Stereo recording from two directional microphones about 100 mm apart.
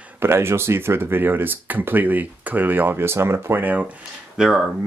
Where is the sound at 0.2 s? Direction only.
25° right (ahead or behind).